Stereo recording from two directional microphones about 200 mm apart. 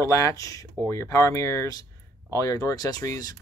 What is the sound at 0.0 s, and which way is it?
Speech, 15° left (ahead or behind).